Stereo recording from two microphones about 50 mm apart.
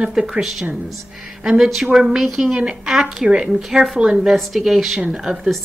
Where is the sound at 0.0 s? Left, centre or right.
Centre.